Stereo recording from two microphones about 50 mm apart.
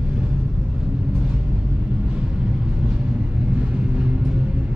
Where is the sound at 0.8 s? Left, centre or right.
Centre.